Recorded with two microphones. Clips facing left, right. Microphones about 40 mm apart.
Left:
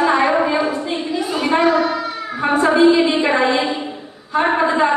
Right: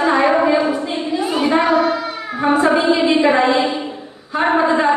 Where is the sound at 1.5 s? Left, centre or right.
Right.